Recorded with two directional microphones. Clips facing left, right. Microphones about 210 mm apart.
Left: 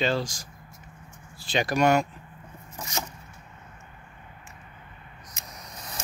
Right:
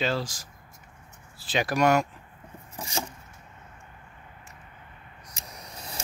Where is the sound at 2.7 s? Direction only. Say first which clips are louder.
Right 1 dB; 30° right (ahead or behind).